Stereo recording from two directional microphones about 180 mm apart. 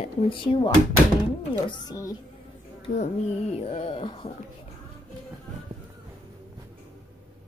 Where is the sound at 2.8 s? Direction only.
40° left (ahead or behind).